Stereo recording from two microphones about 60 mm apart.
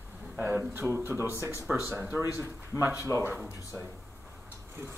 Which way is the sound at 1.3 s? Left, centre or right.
Right.